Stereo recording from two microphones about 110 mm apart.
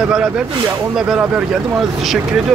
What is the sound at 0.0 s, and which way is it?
Speech, 10° right (ahead or behind).